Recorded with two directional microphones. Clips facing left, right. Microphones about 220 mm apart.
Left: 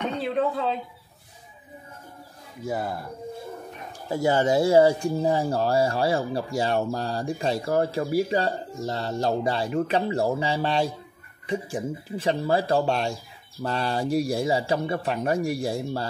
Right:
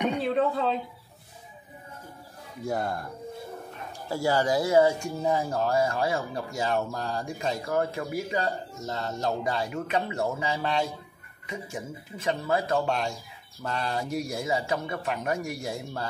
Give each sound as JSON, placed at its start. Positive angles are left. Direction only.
{"t": 0.2, "sound": "speech", "side_deg": 0}
{"t": 2.6, "sound": "speech", "side_deg": 5}
{"t": 4.1, "sound": "speech", "side_deg": 20}